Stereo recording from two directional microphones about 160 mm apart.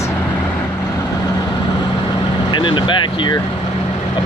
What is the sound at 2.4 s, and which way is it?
Speech, 30° left (ahead or behind).